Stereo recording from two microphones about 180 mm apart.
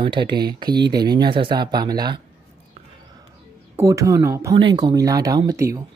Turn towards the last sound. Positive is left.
turn(degrees=-15)  # may be behind; listen again after turning